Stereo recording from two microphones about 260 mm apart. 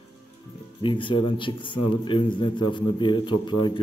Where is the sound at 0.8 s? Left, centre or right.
Centre.